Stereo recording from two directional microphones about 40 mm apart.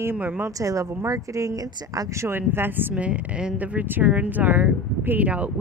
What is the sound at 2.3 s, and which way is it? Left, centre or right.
Speech, right.